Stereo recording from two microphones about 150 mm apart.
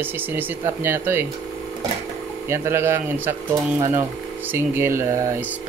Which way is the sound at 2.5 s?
15° right (ahead or behind).